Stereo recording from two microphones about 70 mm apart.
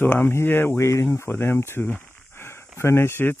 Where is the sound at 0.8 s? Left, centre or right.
Left.